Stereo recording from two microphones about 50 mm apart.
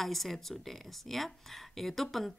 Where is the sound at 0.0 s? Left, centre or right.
Centre.